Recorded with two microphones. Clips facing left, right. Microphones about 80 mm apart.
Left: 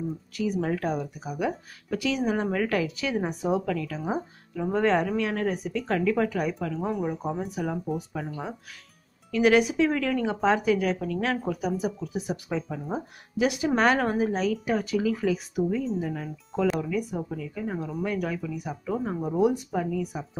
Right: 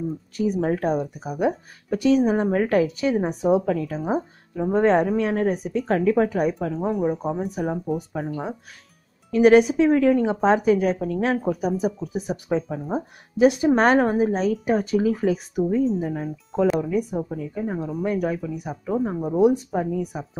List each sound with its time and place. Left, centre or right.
0.4 s speech: right
3.1 s speech: right
18.9 s speech: centre
19.5 s speech: right